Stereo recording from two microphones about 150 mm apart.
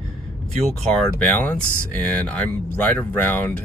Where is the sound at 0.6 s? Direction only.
5° left (ahead or behind).